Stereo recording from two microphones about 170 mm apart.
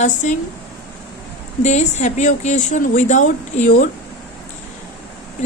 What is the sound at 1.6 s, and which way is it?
Speech, 45° left (ahead or behind).